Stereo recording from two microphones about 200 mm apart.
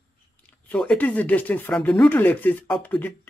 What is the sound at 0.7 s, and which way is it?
Speech, 5° left (ahead or behind).